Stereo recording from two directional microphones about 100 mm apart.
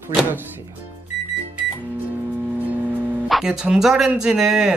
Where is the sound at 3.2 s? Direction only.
5° right (ahead or behind).